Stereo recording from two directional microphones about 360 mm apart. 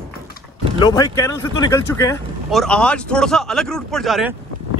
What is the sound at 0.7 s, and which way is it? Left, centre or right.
Speech, centre.